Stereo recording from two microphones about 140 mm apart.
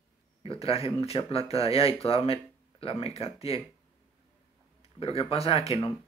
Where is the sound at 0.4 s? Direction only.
40° left (ahead or behind).